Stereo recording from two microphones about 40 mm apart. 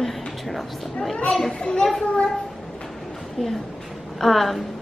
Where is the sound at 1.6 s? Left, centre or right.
Left.